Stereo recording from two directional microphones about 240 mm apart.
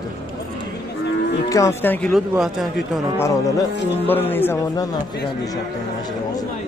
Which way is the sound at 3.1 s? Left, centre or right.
Centre.